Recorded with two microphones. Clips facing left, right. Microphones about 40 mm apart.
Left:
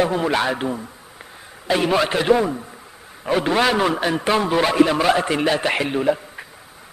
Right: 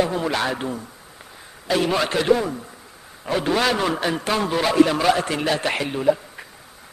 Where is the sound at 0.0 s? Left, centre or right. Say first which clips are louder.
Left 3 dB; centre.